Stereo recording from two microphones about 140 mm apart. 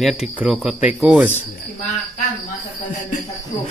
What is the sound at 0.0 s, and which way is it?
A man's voice, centre (ahead or behind).